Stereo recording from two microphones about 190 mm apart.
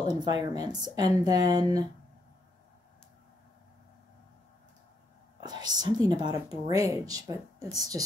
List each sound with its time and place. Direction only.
0.2 s speech: 20° right (ahead or behind)
5.4 s speech: 20° right (ahead or behind)